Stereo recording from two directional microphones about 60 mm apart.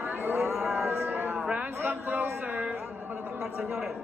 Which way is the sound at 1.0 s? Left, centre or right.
Right.